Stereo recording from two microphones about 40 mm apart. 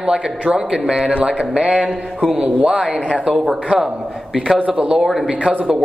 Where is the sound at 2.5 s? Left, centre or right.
Right.